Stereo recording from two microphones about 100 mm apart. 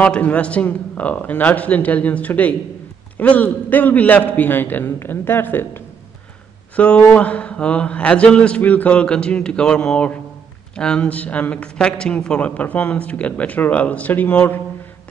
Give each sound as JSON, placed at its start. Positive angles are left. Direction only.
{"t": 0.0, "sound": "a man's voice", "side_deg": 15}
{"t": 6.8, "sound": "speech", "side_deg": 15}